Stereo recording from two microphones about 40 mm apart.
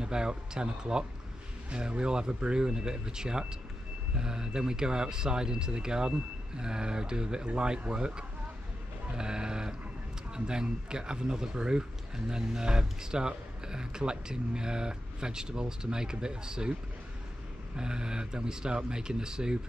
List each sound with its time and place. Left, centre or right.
0.0 s speech: right
17.7 s speech: right